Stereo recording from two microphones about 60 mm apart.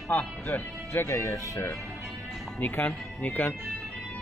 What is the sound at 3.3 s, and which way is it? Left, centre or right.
Speech, left.